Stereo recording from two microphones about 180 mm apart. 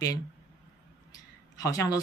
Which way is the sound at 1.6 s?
20° left (ahead or behind).